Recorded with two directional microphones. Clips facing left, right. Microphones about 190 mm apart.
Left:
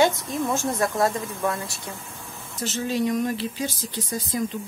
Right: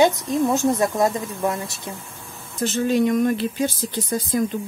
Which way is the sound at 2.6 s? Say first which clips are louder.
Right 6 dB; 55° right (ahead or behind).